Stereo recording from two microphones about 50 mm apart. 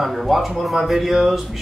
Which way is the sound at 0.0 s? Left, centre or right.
Centre.